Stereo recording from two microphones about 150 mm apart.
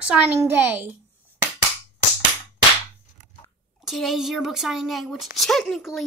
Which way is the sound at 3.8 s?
Centre (ahead or behind).